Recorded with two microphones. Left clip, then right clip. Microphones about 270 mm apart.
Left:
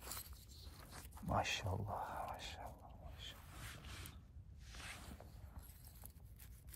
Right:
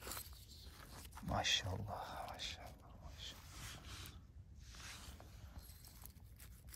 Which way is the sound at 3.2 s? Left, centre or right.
Centre.